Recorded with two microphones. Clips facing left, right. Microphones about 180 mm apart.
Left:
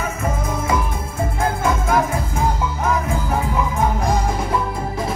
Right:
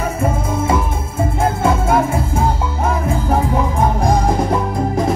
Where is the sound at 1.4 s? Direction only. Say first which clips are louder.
Right 4 dB; 25° right (ahead or behind).